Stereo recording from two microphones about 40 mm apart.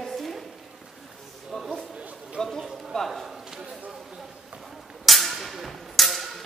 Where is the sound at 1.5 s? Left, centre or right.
Centre.